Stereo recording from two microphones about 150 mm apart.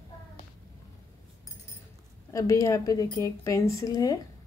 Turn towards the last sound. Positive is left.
turn(degrees=25)  # may be behind; listen again after turning